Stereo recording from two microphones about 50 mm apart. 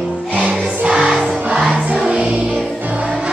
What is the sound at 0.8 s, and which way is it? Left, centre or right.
Music, centre.